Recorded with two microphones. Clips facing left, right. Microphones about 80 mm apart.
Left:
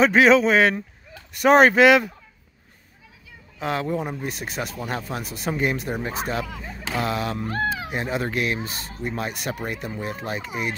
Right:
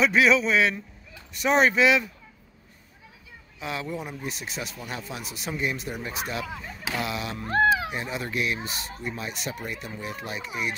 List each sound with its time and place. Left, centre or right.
0.0 s a man's voice: left
3.5 s speech: left
5.9 s a man's voice: left
9.1 s a man's voice: left